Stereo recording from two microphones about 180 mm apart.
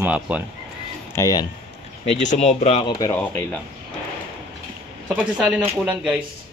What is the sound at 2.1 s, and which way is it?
Speech, 40° left (ahead or behind).